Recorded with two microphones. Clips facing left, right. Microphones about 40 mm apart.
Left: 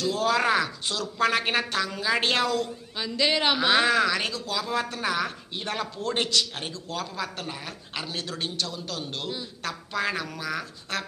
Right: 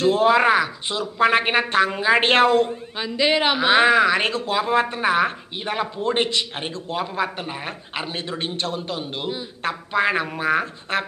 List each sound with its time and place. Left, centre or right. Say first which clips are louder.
0.0 s a man's voice: right 8 dB; right
3.1 s a man's voice: right 4 dB; right
4.2 s a man's voice: right 8 dB; right
8.9 s a man's voice: right 5 dB; right